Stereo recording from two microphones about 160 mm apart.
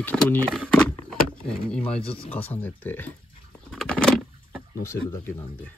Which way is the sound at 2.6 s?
10° left (ahead or behind).